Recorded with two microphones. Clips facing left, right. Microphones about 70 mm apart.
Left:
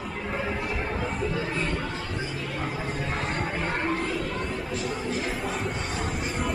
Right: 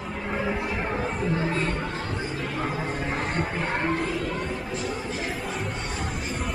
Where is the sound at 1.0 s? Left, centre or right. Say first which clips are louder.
Right 1 dB; centre.